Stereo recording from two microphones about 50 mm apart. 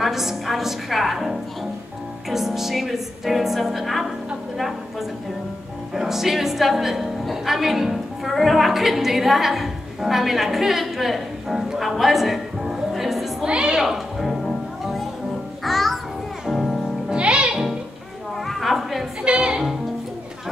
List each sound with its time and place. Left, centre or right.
0.0 s music: centre
5.9 s speech: centre
13.5 s music: centre
13.7 s music: centre
15.6 s music: centre
17.1 s music: centre
18.5 s a sound: centre
19.2 s music: centre